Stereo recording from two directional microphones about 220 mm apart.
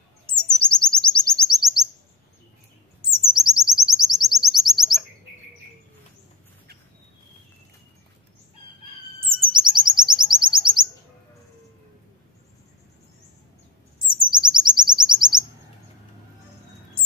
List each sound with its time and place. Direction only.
0.3 s chirp: 5° left (ahead or behind)
3.3 s chirp: centre (ahead or behind)
9.3 s chirp: 20° right (ahead or behind)
13.9 s chirp: 20° right (ahead or behind)